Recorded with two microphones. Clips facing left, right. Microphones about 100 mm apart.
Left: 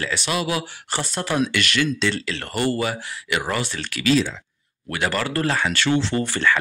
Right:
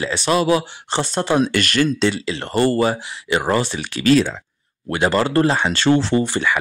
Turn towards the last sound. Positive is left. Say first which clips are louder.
# right 2 dB
turn(degrees=-15)  # may be behind; listen again after turning